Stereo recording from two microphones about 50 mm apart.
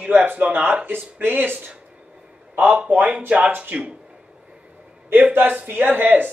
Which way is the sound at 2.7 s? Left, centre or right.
Right.